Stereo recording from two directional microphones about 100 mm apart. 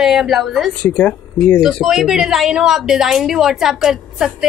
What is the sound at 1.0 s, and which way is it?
Speech, 15° left (ahead or behind).